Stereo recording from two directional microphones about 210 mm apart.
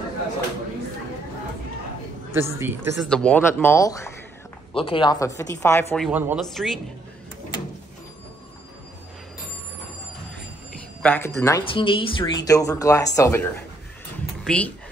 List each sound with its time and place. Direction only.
2.3 s a woman's voice: 10° right (ahead or behind)
3.1 s speech: 5° left (ahead or behind)
4.7 s speech: 25° left (ahead or behind)
6.0 s a woman's voice: 5° right (ahead or behind)
10.7 s a sound: 5° left (ahead or behind)
11.6 s a woman's voice: 25° left (ahead or behind); by 14.7 s 5° left (ahead or behind)